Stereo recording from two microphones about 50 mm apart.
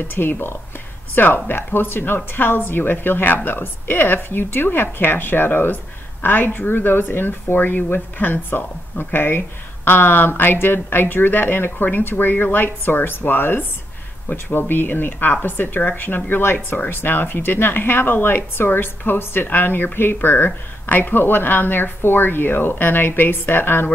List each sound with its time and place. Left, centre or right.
0.1 s a woman's voice: left
16.5 s speech: left
16.9 s a woman's voice: left